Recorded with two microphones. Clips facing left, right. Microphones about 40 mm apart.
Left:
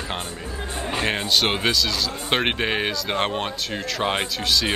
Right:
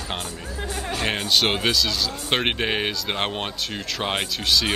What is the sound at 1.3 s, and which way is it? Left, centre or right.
Speech, centre.